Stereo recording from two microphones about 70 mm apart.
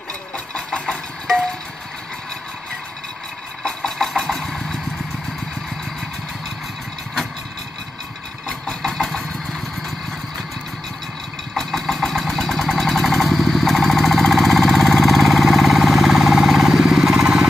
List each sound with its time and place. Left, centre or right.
0.6 s music: centre
3.6 s engine: centre
8.5 s vehicle: centre
11.5 s engine: centre